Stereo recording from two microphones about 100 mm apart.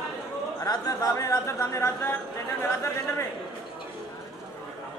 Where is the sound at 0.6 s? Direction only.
35° left (ahead or behind).